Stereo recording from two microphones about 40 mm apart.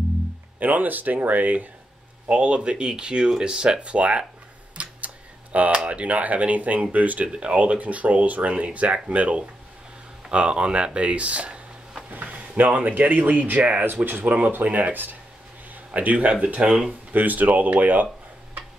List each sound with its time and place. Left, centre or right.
0.6 s speech: right
2.2 s speech: right
3.8 s speech: right
4.7 s tick: right
5.9 s speech: right
7.3 s speech: right
12.2 s speech: right
17.1 s speech: right